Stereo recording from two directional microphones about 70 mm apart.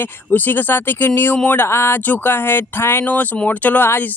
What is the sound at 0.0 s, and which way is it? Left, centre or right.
Speech, left.